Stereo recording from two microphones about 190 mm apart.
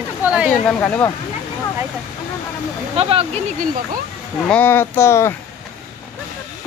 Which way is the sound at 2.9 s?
30° right (ahead or behind).